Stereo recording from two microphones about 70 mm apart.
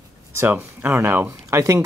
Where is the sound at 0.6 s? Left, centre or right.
Right.